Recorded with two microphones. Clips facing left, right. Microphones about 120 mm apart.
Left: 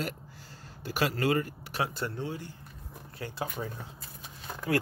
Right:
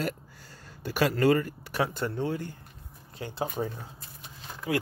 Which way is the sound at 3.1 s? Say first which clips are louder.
Right 4 dB; 25° right (ahead or behind).